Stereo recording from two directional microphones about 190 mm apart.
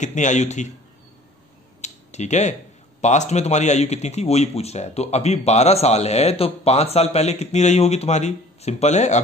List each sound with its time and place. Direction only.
0.0 s speech: 40° left (ahead or behind)
1.8 s a sound: 35° left (ahead or behind)
3.0 s speech: 40° left (ahead or behind)